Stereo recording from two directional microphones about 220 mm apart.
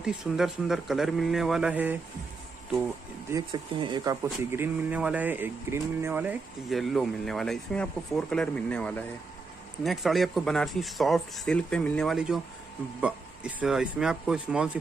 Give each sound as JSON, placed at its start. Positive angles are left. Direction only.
{"t": 0.0, "sound": "speech", "side_deg": 0}
{"t": 3.3, "sound": "speech", "side_deg": -15}